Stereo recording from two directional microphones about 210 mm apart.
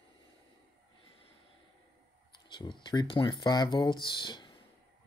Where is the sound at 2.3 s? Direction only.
20° left (ahead or behind).